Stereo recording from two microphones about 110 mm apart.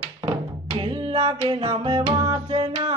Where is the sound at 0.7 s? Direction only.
55° right (ahead or behind).